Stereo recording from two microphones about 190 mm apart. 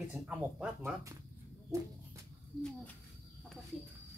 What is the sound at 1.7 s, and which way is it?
Cricket, 15° right (ahead or behind).